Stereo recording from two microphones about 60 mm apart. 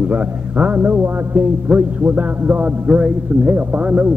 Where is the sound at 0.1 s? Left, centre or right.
Right.